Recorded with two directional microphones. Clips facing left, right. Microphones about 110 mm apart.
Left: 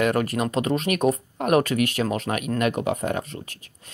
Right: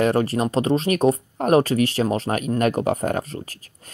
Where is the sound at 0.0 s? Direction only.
30° right (ahead or behind).